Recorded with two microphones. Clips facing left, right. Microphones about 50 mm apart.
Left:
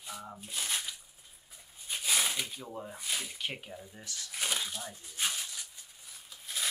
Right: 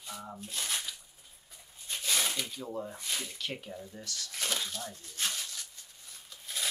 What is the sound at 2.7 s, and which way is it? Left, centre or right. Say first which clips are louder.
Speech: right 2 dB; centre.